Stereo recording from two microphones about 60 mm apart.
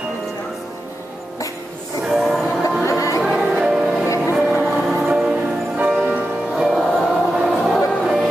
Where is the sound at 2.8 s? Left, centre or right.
Left.